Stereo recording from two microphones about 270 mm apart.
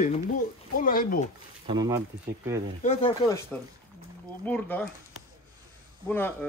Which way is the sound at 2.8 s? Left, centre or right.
Left.